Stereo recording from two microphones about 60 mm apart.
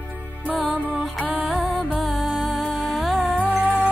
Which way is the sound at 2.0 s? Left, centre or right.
Centre.